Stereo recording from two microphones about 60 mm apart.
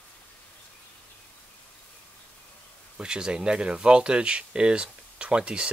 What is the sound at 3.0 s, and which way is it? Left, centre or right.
Speech, centre.